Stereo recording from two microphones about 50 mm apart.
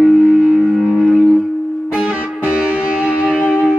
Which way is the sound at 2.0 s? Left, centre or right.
Right.